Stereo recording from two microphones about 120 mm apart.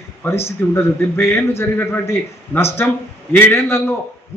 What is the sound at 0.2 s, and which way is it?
A man's voice, 20° left (ahead or behind).